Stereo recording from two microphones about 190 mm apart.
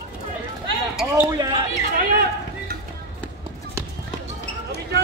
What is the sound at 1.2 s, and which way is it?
Speech, 20° right (ahead or behind).